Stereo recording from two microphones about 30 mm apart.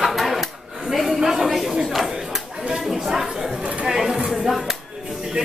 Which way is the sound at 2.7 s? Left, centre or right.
Centre.